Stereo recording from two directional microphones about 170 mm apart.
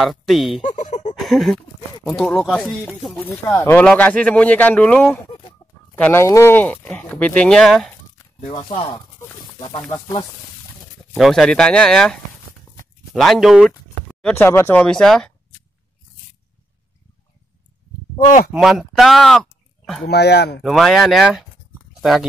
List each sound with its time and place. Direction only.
0.0 s speech: centre (ahead or behind)
0.6 s a sound: 45° left (ahead or behind)
1.1 s a sound: centre (ahead or behind)
2.0 s speech: 5° left (ahead or behind)
3.3 s speech: 15° left (ahead or behind)
8.7 s speech: 30° left (ahead or behind)
11.1 s speech: centre (ahead or behind)
14.3 s speech: 15° left (ahead or behind)
18.2 s speech: 50° left (ahead or behind)
18.5 s speech: centre (ahead or behind)
20.1 s speech: 75° left (ahead or behind)
20.6 s speech: centre (ahead or behind)